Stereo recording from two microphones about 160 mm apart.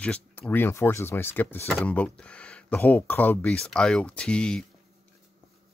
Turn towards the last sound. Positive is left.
turn(degrees=5)  # may be behind; listen again after turning